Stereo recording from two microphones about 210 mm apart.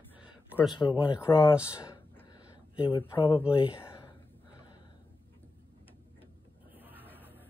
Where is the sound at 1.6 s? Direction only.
15° left (ahead or behind).